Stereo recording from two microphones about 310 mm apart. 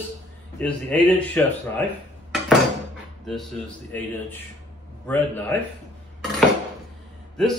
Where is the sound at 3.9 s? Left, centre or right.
Centre.